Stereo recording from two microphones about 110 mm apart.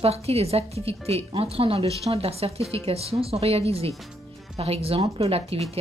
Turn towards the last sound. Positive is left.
turn(degrees=-65)  # may be behind; listen again after turning